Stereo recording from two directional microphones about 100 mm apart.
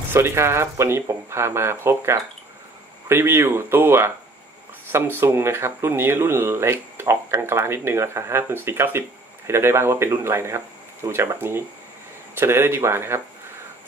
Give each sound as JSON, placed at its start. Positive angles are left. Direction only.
{"t": 0.1, "sound": "speech", "side_deg": -25}